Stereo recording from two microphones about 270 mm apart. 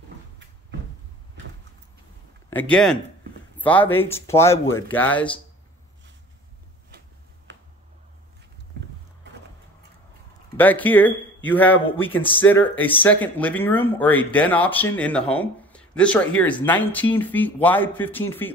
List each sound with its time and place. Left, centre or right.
2.5 s speech: centre
7.5 s a sound: right
8.8 s vehicle: right
10.6 s speech: centre